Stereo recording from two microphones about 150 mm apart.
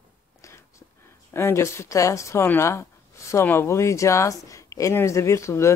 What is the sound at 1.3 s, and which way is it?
Speech, 15° left (ahead or behind).